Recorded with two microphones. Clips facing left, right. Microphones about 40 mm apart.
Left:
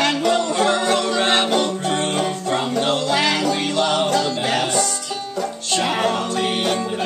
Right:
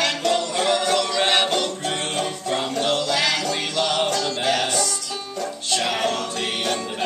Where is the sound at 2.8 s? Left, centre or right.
Left.